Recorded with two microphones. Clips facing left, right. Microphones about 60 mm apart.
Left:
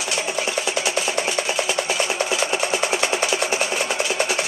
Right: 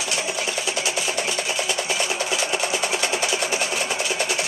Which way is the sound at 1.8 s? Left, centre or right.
Centre.